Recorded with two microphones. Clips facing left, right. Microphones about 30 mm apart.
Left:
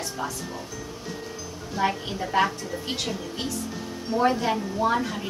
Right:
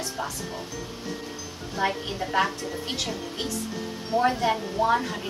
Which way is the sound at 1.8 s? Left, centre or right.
Centre.